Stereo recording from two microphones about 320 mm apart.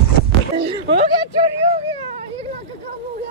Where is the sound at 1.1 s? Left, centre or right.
Centre.